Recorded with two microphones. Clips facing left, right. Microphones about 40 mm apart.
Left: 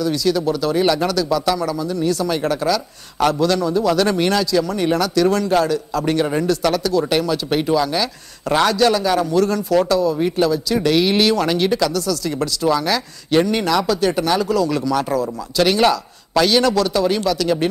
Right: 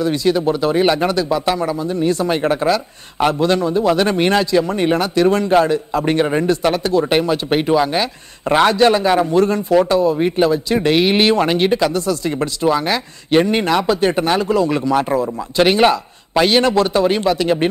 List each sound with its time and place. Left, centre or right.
0.0 s speech: right